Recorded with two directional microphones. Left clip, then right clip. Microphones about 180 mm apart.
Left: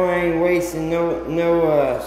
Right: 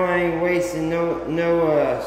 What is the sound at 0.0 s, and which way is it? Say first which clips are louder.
Speech: left 2 dB; 20° left (ahead or behind).